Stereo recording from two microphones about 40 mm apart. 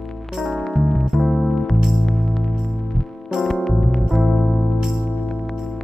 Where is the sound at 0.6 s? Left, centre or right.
Centre.